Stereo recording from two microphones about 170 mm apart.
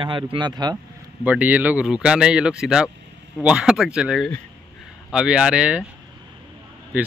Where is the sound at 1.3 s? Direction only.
10° right (ahead or behind).